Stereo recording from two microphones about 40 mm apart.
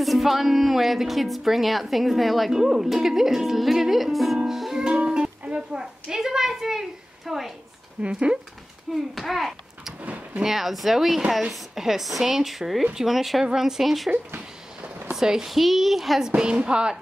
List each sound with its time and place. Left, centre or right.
0.0 s speech: centre
4.5 s music: centre
4.7 s a child's voice: centre
8.0 s a woman's voice: right
8.9 s speech: centre
10.0 s vehicle: right
10.4 s speech: centre
15.1 s speech: centre
16.2 s a woman's voice: right